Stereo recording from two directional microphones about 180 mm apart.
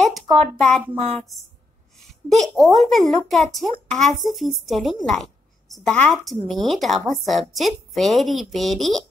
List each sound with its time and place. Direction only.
0.1 s a woman's voice: centre (ahead or behind)